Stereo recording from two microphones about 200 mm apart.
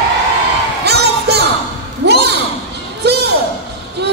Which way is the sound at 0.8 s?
55° right (ahead or behind).